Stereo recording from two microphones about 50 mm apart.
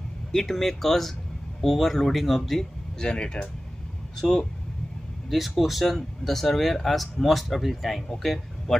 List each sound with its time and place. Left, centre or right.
0.3 s speech: centre
3.0 s speech: centre
5.6 s speech: centre